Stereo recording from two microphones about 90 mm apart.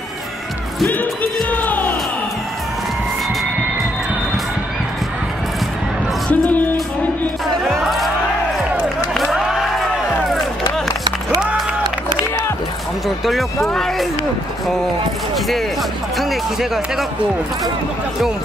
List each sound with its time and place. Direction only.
0.8 s speech: 20° left (ahead or behind)
1.5 s music: 20° left (ahead or behind)
6.2 s music: 15° left (ahead or behind)
7.6 s a sound: 5° right (ahead or behind)
8.8 s run: centre (ahead or behind)
13.2 s speech: centre (ahead or behind)
15.3 s speech: centre (ahead or behind)